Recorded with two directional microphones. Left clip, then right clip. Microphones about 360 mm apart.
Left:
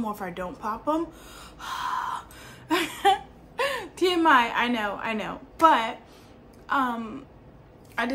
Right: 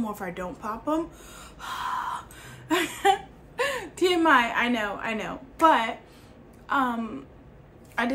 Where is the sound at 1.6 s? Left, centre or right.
Centre.